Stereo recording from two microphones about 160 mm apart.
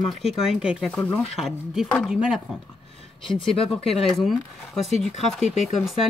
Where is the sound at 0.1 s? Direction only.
Centre (ahead or behind).